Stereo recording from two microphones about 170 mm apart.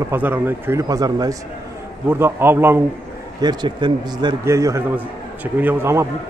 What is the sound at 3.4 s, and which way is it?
A man's voice, 25° right (ahead or behind).